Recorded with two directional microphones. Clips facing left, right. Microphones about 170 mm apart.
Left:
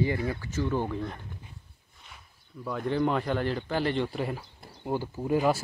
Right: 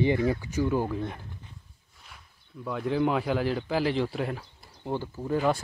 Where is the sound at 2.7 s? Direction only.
Centre (ahead or behind).